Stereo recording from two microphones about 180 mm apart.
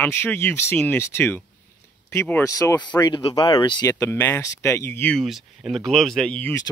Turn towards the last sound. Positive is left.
turn(degrees=5)  # may be behind; listen again after turning